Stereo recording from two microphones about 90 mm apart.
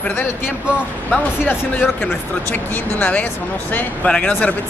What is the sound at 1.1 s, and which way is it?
A man's voice, 20° left (ahead or behind).